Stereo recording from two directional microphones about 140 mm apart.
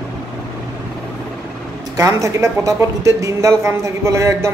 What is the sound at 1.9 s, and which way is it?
Speech, 20° right (ahead or behind).